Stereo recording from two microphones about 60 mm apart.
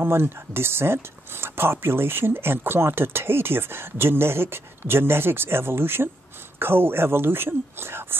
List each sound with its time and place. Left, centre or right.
0.0 s speech: right